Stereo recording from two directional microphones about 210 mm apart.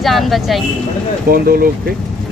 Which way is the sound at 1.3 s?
45° right (ahead or behind).